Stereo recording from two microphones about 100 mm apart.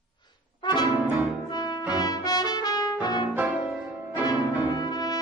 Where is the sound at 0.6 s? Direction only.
45° left (ahead or behind).